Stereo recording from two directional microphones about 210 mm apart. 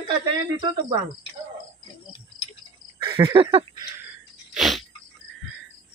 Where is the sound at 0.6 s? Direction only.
20° right (ahead or behind).